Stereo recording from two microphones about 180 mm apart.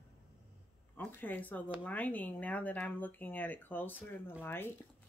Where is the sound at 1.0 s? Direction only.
10° left (ahead or behind).